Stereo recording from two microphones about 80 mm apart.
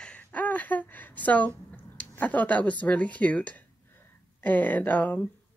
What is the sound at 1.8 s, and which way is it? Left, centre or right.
Speech, left.